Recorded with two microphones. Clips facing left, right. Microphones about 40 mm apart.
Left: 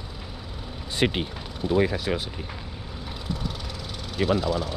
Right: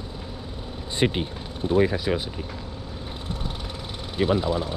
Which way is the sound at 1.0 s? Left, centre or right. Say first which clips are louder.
Right 1 dB; left.